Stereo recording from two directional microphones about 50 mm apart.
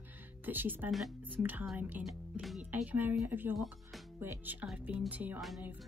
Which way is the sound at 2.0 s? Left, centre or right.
Centre.